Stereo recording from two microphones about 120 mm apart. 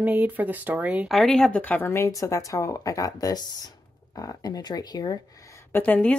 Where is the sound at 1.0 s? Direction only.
Centre (ahead or behind).